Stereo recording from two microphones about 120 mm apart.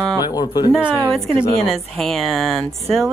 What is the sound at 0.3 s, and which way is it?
Speech, 35° left (ahead or behind).